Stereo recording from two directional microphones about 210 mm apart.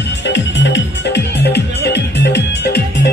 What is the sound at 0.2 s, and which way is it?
Music, 55° left (ahead or behind).